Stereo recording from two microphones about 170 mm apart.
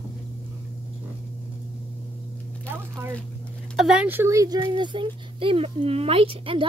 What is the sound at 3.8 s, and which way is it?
Speech, 5° right (ahead or behind).